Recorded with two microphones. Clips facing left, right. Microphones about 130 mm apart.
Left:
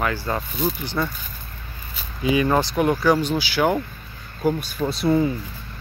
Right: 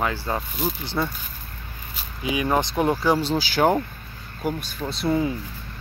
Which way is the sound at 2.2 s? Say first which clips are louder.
Left 3 dB; 10° right (ahead or behind).